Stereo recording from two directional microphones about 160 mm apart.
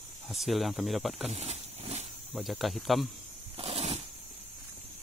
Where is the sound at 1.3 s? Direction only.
40° right (ahead or behind).